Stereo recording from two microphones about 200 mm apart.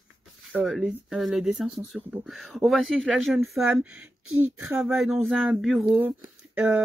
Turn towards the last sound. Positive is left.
turn(degrees=-10)  # may be behind; listen again after turning